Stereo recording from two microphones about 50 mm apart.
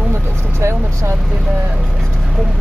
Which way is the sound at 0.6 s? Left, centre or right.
Right.